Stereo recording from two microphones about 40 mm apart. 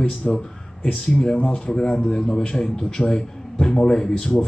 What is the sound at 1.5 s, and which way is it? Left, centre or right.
Speech, centre.